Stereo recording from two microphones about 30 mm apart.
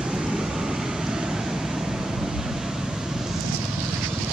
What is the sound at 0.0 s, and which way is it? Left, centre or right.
Vehicle, right.